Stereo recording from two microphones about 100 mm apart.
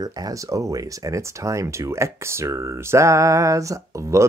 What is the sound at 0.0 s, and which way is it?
Speech, 35° right (ahead or behind).